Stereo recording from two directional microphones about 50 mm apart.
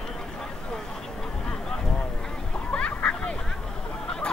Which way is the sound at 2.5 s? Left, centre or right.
Left.